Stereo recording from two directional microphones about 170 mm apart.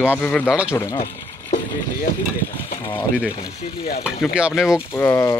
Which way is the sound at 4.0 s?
5° right (ahead or behind).